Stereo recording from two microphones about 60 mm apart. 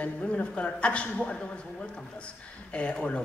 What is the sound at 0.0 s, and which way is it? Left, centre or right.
A woman's voice, left.